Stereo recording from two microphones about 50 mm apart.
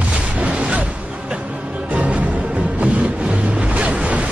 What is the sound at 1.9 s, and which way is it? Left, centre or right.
Music, right.